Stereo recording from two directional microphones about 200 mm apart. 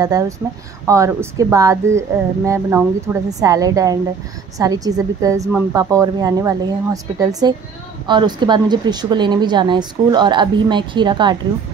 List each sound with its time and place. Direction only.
0.8 s a woman's voice: 15° right (ahead or behind)